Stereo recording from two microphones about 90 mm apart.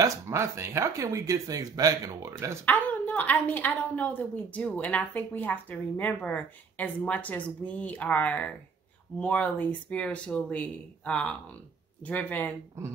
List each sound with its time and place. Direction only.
0.0 s speech: 35° right (ahead or behind)
2.6 s a woman's voice: 20° left (ahead or behind)